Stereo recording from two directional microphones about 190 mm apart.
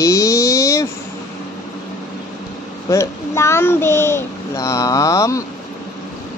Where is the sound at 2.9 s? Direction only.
15° left (ahead or behind).